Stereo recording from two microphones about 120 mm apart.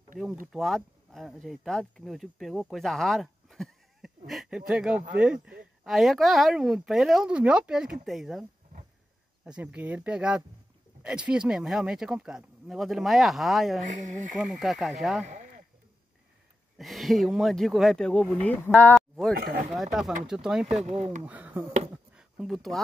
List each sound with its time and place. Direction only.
0.5 s speech: centre (ahead or behind)
13.8 s speech: 90° right
14.5 s speech: centre (ahead or behind)
15.2 s a sound: 90° right
16.7 s speech: centre (ahead or behind)
20.8 s speech: 65° right (ahead or behind)
21.3 s speech: 15° right (ahead or behind)
21.9 s a sound: 5° right (ahead or behind)